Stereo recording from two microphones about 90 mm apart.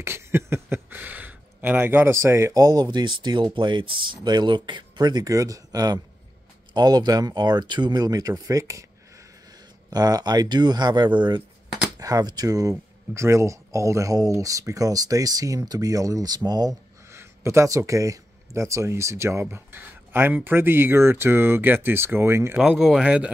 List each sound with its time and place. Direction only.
0.0 s a sound: 30° right (ahead or behind)
2.5 s speech: 45° right (ahead or behind)
9.8 s speech: 45° right (ahead or behind)
12.0 s speech: 45° right (ahead or behind)
17.1 s speech: 30° right (ahead or behind)
22.6 s speech: 5° right (ahead or behind)